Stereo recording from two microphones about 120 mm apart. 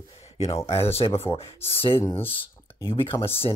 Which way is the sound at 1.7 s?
50° left (ahead or behind).